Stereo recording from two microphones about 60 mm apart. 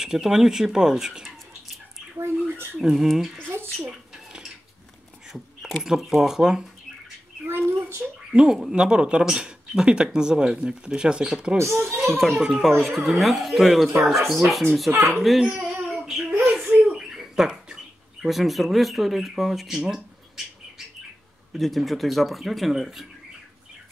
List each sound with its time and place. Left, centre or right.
0.0 s speech: centre
2.1 s speech: right
2.8 s speech: centre
3.7 s a sound: centre
5.3 s a sound: centre
5.9 s speech: centre
7.4 s a sound: right
8.3 s speech: centre
11.5 s speech: right
12.1 s speech: centre
15.6 s a sound: centre
17.1 s bird: centre
18.2 s speech: centre
21.5 s speech: centre